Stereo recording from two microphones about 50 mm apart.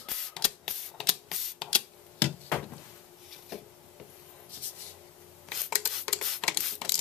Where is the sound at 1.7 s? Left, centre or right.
Left.